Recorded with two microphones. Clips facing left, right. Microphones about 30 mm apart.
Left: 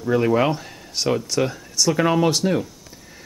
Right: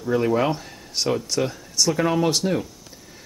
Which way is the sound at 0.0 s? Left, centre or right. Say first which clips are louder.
Left 2 dB; centre.